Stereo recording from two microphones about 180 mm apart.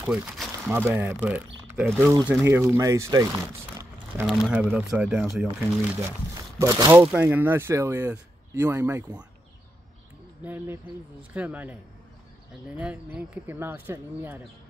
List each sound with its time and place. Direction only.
0.0 s speech: 5° right (ahead or behind)
4.3 s speech: 5° right (ahead or behind)
5.6 s speech: 15° right (ahead or behind)
10.4 s speech: 10° right (ahead or behind)
12.7 s speech: 10° right (ahead or behind)